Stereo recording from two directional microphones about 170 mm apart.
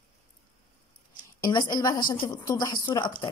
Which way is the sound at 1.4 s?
25° left (ahead or behind).